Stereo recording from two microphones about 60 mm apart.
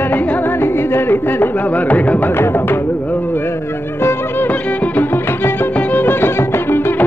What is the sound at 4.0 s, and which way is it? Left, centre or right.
Music, left.